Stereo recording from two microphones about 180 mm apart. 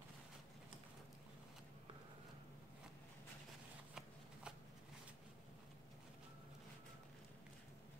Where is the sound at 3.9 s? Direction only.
5° right (ahead or behind).